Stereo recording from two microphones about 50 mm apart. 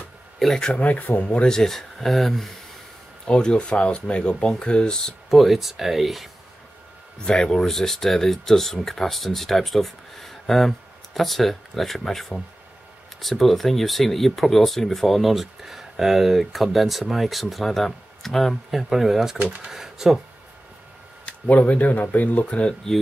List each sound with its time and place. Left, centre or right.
0.4 s speech: centre
0.7 s speech: left
1.4 s speech: centre
3.3 s speech: centre
5.3 s speech: centre
7.2 s speech: centre
19.3 s speech: right
19.7 s speech: centre
21.3 s speech: left